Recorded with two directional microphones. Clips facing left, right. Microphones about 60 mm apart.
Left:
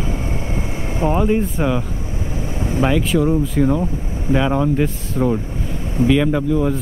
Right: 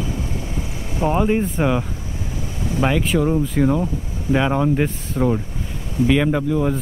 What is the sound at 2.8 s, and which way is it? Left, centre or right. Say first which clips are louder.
Speech: left 1 dB; centre.